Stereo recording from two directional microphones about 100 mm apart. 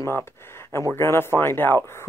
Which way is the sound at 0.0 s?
25° left (ahead or behind).